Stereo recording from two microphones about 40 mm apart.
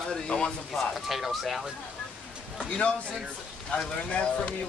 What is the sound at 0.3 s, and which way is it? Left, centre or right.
Speech, centre.